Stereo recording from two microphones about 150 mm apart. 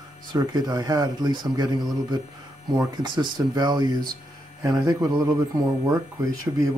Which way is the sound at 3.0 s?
30° right (ahead or behind).